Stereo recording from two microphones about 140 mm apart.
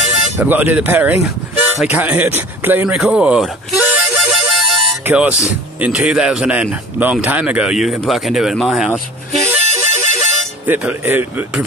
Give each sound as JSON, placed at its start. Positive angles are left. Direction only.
{"t": 0.4, "sound": "speech", "side_deg": -10}
{"t": 2.9, "sound": "music", "side_deg": -5}
{"t": 5.0, "sound": "a man's voice", "side_deg": -10}
{"t": 9.7, "sound": "bagpipes", "side_deg": -55}
{"t": 10.7, "sound": "speech", "side_deg": -10}